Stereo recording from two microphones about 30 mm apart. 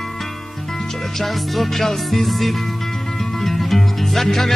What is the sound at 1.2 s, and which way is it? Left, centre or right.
Music, centre.